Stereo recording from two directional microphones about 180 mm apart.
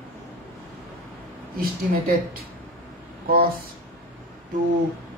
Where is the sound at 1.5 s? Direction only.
55° right (ahead or behind).